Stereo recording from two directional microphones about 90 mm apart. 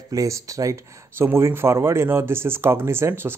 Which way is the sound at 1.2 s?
25° right (ahead or behind).